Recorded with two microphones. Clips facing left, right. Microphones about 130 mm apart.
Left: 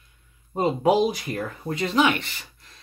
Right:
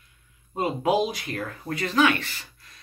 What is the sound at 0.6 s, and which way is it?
Speech, 30° left (ahead or behind).